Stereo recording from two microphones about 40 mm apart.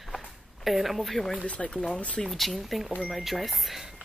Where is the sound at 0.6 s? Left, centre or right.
Centre.